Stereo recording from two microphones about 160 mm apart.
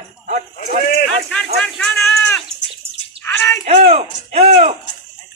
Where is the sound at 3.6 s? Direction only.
40° right (ahead or behind).